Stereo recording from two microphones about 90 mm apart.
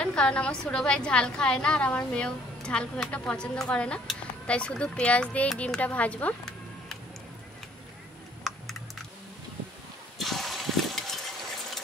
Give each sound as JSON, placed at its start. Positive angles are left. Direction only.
{"t": 0.0, "sound": "a woman's voice", "side_deg": 10}
{"t": 8.5, "sound": "computer keyboard", "side_deg": 0}
{"t": 10.1, "sound": "a sound", "side_deg": 0}